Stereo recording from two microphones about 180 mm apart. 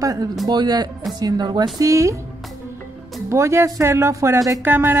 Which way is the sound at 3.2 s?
15° right (ahead or behind).